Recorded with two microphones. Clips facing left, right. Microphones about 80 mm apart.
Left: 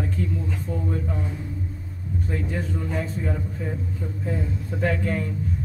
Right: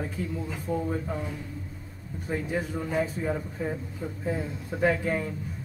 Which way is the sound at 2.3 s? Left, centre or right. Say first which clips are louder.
Right 2 dB; centre.